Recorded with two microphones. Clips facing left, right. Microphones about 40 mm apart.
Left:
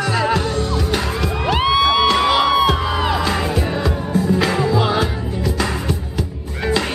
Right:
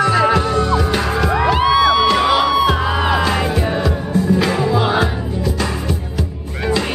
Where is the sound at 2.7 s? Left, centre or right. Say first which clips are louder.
Right 2 dB; centre.